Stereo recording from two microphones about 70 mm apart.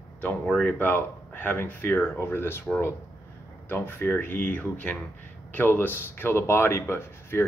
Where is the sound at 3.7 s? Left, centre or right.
Left.